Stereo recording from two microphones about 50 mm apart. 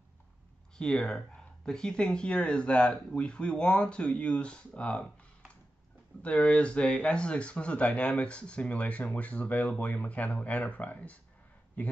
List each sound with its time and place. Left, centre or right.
0.7 s speech: centre
6.2 s speech: left